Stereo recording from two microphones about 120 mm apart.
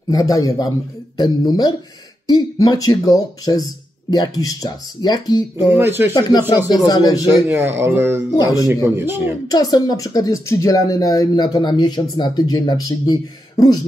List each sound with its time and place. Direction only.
0.1 s a woman's voice: 30° left (ahead or behind)
5.7 s speech: 20° right (ahead or behind)
6.5 s a woman's voice: 35° left (ahead or behind)
7.2 s speech: 20° right (ahead or behind)
8.4 s a woman's voice: 30° left (ahead or behind)
8.8 s speech: 20° right (ahead or behind)
9.5 s a woman's voice: 35° left (ahead or behind)